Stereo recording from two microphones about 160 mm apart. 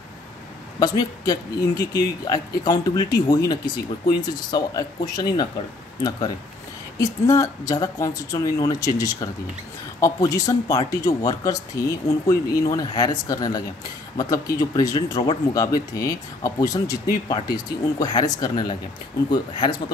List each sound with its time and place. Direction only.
0.7 s speech: 25° left (ahead or behind)
7.0 s speech: 20° left (ahead or behind)